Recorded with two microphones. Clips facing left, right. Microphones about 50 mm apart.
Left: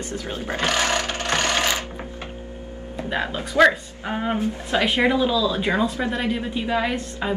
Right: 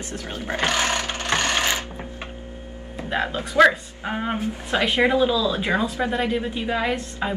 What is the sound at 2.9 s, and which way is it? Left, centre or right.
Music, centre.